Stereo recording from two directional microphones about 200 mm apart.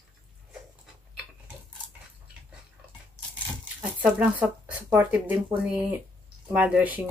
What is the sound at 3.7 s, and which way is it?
Speech, 5° right (ahead or behind).